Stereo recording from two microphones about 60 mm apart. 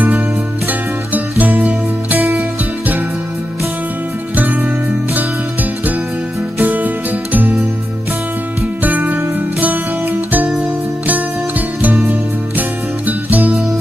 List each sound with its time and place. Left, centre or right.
1.4 s music: right
4.4 s music: right
8.8 s music: right
11.8 s music: right